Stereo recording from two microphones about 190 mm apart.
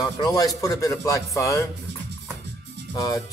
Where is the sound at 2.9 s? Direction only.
20° left (ahead or behind).